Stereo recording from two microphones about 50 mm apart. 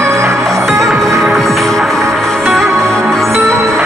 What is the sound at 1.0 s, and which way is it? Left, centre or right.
Music, right.